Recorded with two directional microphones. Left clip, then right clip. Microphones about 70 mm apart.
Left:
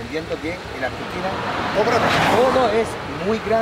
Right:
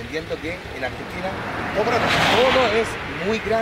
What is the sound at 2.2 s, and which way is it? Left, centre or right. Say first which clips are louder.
Speech: right 2 dB; centre.